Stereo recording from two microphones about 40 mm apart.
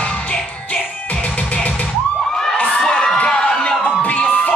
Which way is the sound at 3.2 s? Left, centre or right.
Centre.